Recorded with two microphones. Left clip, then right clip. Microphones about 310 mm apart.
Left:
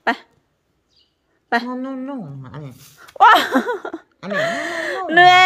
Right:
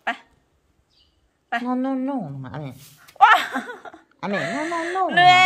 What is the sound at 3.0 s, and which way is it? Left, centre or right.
Speech, centre.